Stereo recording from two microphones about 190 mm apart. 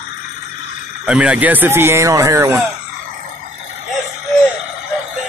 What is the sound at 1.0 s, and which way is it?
Speech, 5° right (ahead or behind).